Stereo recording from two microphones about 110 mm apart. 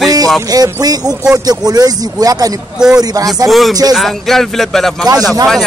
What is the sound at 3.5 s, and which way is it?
Speech, centre (ahead or behind).